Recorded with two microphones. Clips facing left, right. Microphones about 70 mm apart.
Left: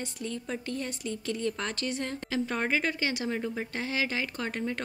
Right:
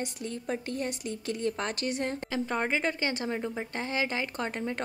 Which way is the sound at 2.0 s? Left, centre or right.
Right.